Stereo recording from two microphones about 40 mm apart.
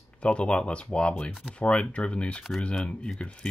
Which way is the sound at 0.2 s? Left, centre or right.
Left.